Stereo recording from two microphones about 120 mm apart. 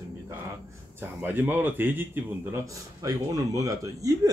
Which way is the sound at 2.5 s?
30° right (ahead or behind).